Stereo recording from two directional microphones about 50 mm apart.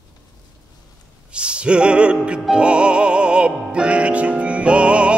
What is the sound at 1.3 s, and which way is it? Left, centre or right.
Music, right.